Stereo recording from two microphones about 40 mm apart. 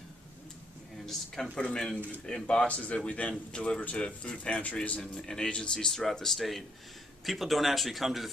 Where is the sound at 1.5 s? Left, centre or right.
Centre.